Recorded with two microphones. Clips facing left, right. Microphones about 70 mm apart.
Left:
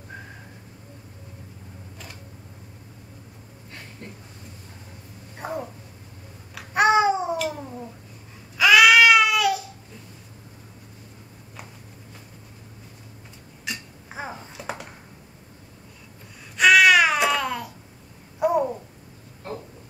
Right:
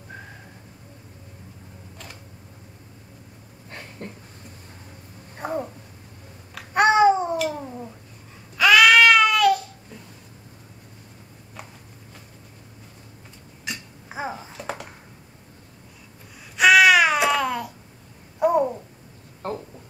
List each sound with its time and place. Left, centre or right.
5.4 s babbling: centre
8.5 s a sound: centre
13.7 s babbling: centre
16.5 s babbling: centre